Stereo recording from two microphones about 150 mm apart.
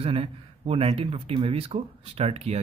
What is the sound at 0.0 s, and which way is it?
Speech, 40° right (ahead or behind).